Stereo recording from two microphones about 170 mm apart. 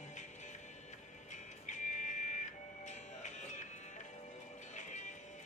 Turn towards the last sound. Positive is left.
turn(degrees=45)  # may be behind; listen again after turning